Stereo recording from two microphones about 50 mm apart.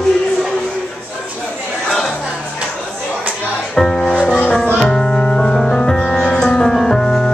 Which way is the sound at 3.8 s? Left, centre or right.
Centre.